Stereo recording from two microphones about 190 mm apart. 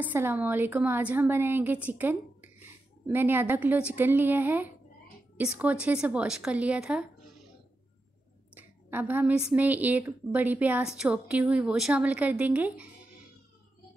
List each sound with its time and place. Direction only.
0.0 s a woman's voice: 10° right (ahead or behind)
8.5 s a woman's voice: 10° right (ahead or behind)